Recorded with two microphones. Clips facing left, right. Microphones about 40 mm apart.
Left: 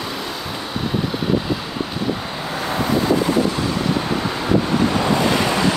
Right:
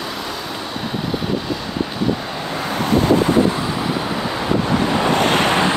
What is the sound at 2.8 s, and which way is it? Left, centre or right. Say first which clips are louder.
Vehicle: right 3 dB; right.